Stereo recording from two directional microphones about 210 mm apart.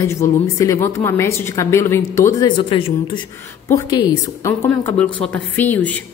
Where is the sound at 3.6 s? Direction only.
15° left (ahead or behind).